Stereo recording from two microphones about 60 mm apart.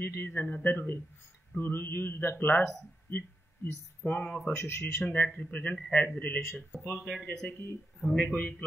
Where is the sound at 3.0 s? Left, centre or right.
Left.